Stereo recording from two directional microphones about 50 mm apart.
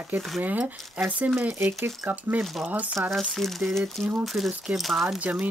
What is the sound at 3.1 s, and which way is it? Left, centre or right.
Speech, centre.